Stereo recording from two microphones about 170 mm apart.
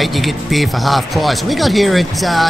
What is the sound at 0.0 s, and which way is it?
A man's voice, centre (ahead or behind).